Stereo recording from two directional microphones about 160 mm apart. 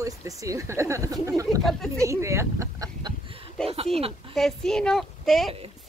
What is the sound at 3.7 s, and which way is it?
Speech, 40° right (ahead or behind).